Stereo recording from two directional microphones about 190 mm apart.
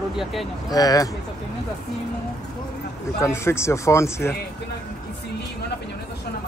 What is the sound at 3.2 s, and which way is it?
Speech, 15° left (ahead or behind).